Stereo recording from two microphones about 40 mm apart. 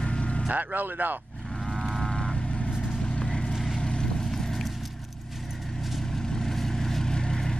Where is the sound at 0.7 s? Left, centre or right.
Right.